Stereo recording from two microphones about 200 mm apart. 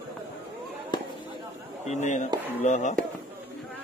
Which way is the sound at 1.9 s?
35° left (ahead or behind).